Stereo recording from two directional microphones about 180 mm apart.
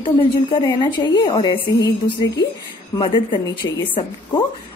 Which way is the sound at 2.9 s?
25° left (ahead or behind).